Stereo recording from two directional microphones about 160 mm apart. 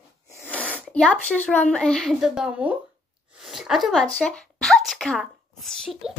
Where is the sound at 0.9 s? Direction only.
10° left (ahead or behind).